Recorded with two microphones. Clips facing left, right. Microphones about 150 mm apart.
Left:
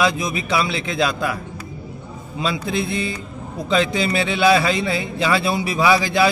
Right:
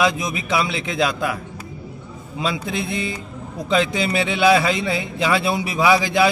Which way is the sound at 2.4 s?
20° right (ahead or behind).